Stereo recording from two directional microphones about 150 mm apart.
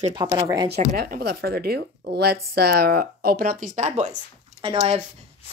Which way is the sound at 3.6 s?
55° right (ahead or behind).